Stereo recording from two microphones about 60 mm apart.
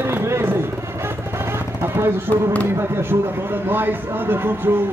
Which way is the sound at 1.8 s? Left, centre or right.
Right.